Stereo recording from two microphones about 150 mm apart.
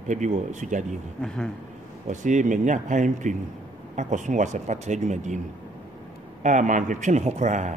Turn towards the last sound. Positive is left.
turn(degrees=-55)  # may be behind; listen again after turning